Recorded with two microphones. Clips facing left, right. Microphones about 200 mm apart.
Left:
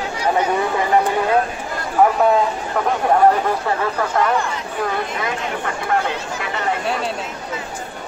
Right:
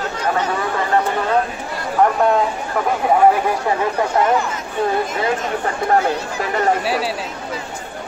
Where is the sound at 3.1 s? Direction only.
10° right (ahead or behind).